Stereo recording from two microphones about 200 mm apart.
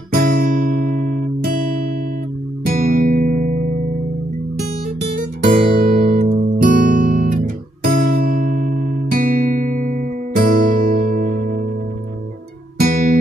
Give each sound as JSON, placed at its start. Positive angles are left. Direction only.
{"t": 0.1, "sound": "music", "side_deg": -45}
{"t": 5.8, "sound": "guitar", "side_deg": -45}
{"t": 9.1, "sound": "music", "side_deg": -45}
{"t": 12.7, "sound": "music", "side_deg": -45}